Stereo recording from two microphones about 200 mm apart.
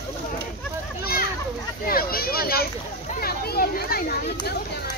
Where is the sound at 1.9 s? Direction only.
45° left (ahead or behind).